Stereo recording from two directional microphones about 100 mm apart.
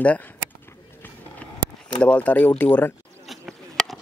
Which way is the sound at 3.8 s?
10° left (ahead or behind).